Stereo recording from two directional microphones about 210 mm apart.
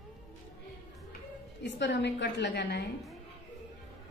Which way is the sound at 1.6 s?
55° left (ahead or behind).